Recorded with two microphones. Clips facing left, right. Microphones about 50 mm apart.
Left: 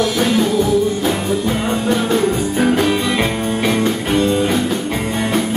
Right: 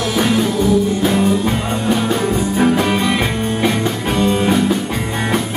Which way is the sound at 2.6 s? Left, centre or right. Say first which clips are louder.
Even; centre.